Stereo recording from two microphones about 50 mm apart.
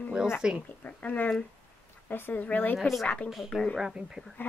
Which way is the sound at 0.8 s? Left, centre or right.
Left.